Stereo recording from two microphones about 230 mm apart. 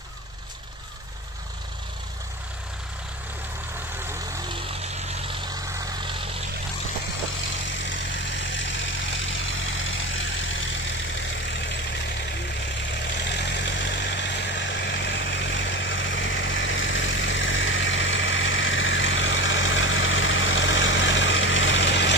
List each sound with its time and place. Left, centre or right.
7.8 s vehicle: left
13.2 s vehicle: left